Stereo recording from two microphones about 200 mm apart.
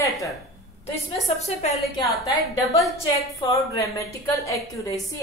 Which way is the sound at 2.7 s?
Centre (ahead or behind).